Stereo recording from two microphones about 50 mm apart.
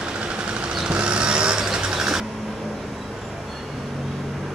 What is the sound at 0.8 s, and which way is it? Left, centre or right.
Vehicle, right.